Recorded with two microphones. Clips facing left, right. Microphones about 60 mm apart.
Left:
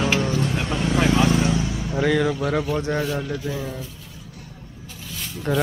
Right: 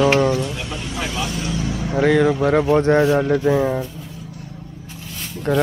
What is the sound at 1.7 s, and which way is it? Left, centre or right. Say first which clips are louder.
Speech: right 4 dB; right.